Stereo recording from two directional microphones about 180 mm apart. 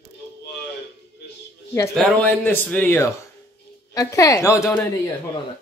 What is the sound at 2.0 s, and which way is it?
A woman's voice, 10° left (ahead or behind).